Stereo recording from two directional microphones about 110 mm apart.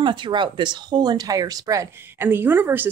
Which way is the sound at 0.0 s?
45° right (ahead or behind).